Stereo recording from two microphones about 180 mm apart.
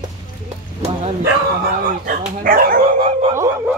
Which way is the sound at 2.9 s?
35° right (ahead or behind).